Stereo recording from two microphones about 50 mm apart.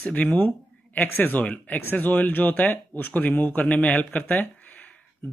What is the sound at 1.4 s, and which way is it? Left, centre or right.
Speech, left.